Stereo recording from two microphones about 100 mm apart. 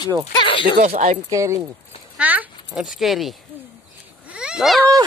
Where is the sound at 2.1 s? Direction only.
15° right (ahead or behind).